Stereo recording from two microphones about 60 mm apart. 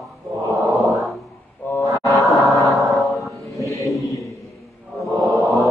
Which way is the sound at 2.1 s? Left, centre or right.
Left.